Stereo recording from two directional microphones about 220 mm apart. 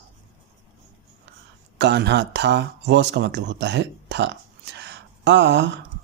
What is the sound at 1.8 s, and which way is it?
Speech, 50° right (ahead or behind).